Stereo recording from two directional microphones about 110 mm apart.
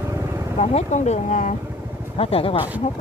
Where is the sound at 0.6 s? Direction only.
85° left.